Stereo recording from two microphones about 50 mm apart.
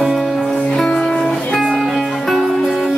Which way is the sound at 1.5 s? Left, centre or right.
Centre.